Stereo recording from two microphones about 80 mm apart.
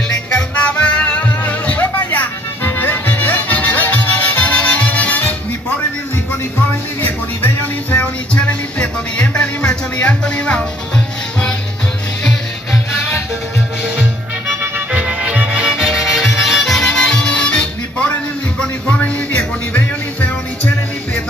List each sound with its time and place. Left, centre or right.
0.1 s music: centre
7.4 s music: centre
14.9 s music: centre